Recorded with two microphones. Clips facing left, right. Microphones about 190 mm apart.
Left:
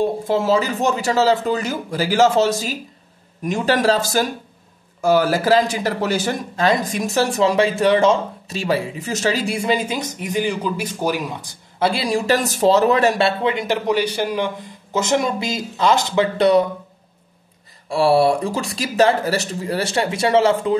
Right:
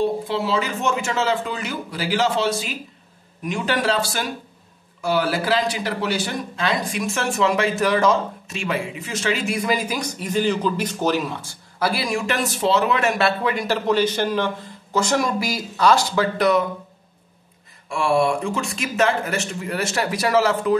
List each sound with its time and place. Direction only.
0.0 s speech: 45° left (ahead or behind); by 16.6 s 30° left (ahead or behind)
17.8 s speech: 35° left (ahead or behind)